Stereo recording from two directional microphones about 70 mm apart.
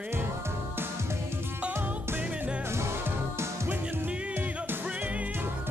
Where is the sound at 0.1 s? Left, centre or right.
Right.